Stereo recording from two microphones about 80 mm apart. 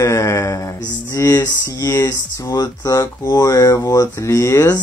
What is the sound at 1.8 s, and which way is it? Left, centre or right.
Speech, left.